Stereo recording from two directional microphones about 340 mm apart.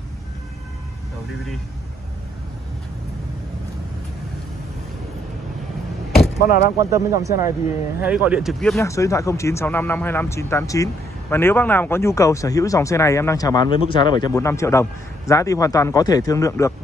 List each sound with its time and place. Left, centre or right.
6.2 s vehicle: left
6.8 s speech: centre